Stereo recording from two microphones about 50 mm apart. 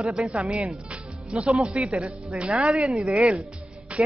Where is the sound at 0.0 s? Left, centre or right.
Centre.